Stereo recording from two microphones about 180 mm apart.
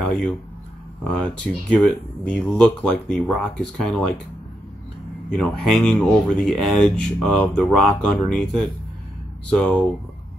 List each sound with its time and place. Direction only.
0.0 s speech: 5° left (ahead or behind)
5.4 s speech: 5° left (ahead or behind)